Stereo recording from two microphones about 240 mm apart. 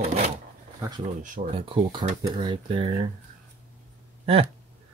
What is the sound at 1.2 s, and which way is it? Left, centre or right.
Speech, right.